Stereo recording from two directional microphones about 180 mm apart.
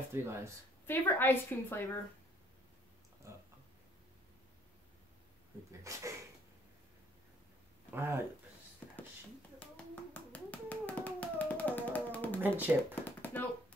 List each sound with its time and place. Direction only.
0.1 s speech: 15° right (ahead or behind)
0.8 s a woman's voice: 10° left (ahead or behind)
3.2 s a sound: 15° right (ahead or behind)
5.7 s speech: 15° right (ahead or behind)
7.9 s speech: 15° right (ahead or behind)
8.8 s a sound: 10° left (ahead or behind)
10.3 s a sound: 10° left (ahead or behind)
12.4 s speech: 10° right (ahead or behind)
12.9 s tap: 10° left (ahead or behind)